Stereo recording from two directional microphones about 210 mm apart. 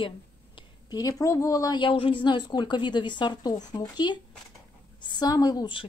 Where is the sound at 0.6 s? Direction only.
20° left (ahead or behind).